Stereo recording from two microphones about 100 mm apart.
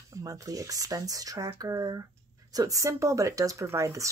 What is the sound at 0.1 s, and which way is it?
Speech, 35° right (ahead or behind).